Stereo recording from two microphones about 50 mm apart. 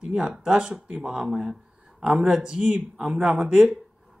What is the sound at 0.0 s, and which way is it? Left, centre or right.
Speech, centre.